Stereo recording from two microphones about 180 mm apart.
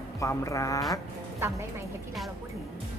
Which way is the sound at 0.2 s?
15° left (ahead or behind).